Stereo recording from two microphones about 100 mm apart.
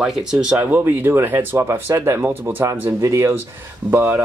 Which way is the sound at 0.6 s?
15° right (ahead or behind).